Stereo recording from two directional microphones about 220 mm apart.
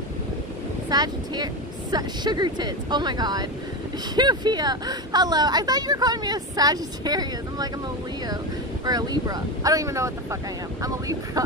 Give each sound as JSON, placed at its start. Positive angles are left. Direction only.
{"t": 0.8, "sound": "speech", "side_deg": -20}
{"t": 8.8, "sound": "speech", "side_deg": -15}